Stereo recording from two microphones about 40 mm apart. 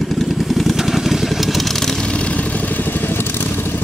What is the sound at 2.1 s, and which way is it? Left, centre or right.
Vehicle, left.